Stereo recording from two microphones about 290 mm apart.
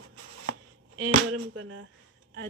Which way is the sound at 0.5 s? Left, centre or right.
Right.